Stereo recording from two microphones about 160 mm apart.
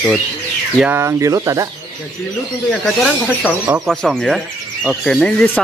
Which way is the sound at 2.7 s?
Centre (ahead or behind).